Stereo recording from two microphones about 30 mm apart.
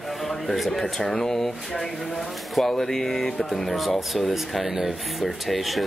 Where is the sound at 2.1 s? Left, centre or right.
Centre.